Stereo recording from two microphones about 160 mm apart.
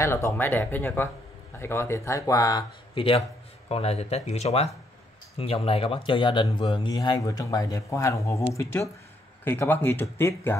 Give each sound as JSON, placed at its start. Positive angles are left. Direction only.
{"t": 0.0, "sound": "speech", "side_deg": 15}
{"t": 9.4, "sound": "speech", "side_deg": 15}